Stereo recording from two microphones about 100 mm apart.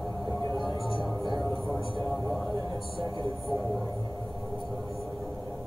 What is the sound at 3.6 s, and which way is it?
Speech, 30° left (ahead or behind).